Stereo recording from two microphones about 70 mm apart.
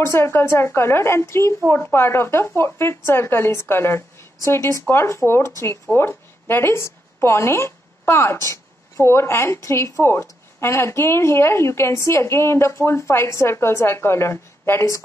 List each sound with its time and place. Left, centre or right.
0.0 s a woman's voice: left